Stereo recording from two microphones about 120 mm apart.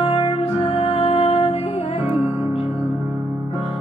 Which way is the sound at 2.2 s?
20° right (ahead or behind).